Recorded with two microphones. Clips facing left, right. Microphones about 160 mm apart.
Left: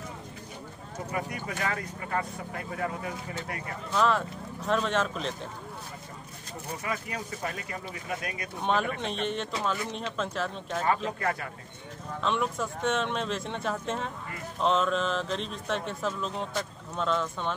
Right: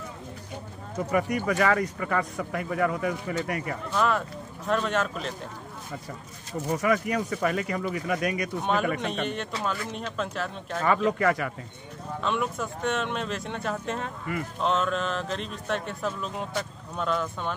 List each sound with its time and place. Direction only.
1.1 s speech: 85° right
3.9 s speech: 5° right (ahead or behind)
6.7 s speech: 75° right (ahead or behind)
8.6 s speech: centre (ahead or behind)
11.1 s a man's voice: 90° right
12.2 s speech: 5° right (ahead or behind)